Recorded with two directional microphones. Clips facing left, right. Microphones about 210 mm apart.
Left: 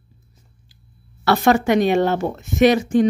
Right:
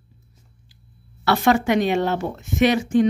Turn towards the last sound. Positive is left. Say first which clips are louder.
# left 3 dB
turn(degrees=40)  # may be behind; listen again after turning